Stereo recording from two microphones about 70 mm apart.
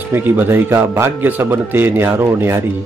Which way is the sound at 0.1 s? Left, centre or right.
Right.